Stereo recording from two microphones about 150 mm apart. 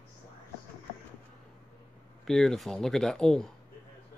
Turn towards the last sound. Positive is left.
turn(degrees=5)  # may be behind; listen again after turning